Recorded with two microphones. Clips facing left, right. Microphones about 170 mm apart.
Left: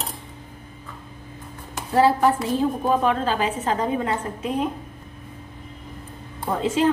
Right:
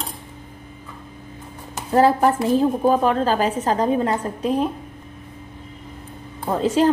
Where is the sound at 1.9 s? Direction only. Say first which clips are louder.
Right 2 dB; 45° right (ahead or behind).